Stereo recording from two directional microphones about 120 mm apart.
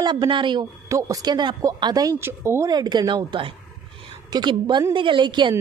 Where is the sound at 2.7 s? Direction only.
35° right (ahead or behind).